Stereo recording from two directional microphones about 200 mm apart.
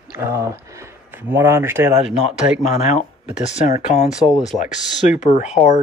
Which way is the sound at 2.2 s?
35° left (ahead or behind).